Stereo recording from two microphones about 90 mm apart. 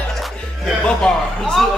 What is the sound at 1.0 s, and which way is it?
Speech, 5° left (ahead or behind).